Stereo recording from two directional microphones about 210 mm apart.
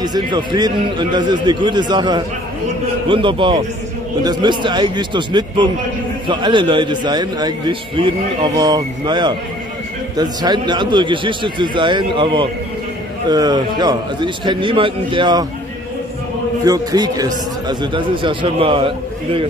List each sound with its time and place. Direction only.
0.0 s a man's voice: 20° right (ahead or behind)
16.6 s a man's voice: 20° right (ahead or behind)